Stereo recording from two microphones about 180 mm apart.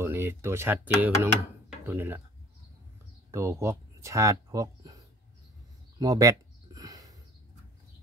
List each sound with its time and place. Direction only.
0.0 s speech: 15° right (ahead or behind)
3.3 s speech: 15° right (ahead or behind)
5.9 s a sound: 20° right (ahead or behind)